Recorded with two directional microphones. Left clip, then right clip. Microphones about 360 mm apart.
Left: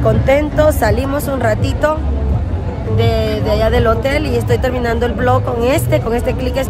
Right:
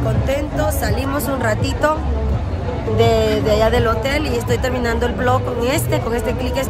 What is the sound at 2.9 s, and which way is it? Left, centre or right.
Speech, centre.